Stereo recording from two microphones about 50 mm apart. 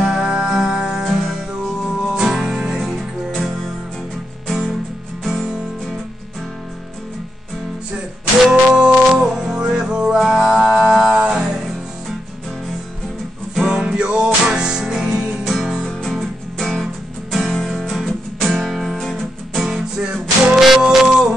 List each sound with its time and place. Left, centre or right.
0.0 s music: centre
2.0 s music: centre
4.5 s music: centre
8.5 s music: centre
13.6 s music: centre
15.8 s music: centre
16.1 s music: centre
20.0 s music: centre
20.5 s music: centre